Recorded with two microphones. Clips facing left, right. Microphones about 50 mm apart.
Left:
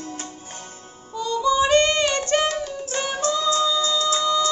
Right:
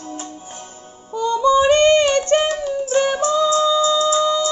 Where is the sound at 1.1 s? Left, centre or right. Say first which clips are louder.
Right 6 dB; right.